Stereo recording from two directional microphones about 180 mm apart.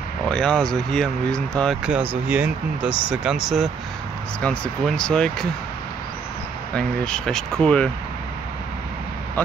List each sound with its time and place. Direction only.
0.3 s speech: 5° left (ahead or behind)
6.7 s speech: 5° left (ahead or behind)